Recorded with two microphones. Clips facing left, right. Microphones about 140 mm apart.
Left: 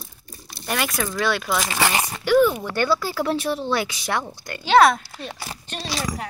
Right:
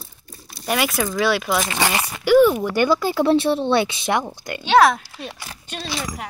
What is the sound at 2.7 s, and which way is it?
Speech, 15° right (ahead or behind).